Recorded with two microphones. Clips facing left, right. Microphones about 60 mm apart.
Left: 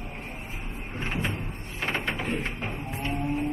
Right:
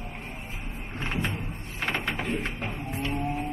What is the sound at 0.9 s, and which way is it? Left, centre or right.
Speech, left.